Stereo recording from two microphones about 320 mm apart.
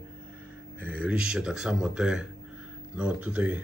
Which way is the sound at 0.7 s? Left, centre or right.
Centre.